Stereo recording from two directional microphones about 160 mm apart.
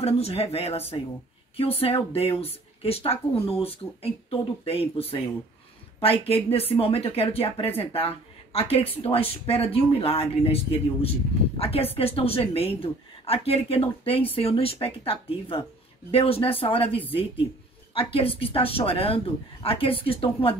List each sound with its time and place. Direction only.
0.0 s speech: 40° left (ahead or behind)